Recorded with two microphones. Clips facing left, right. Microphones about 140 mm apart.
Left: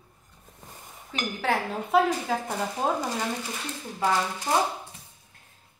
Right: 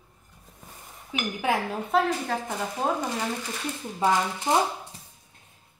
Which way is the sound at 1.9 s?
5° left (ahead or behind).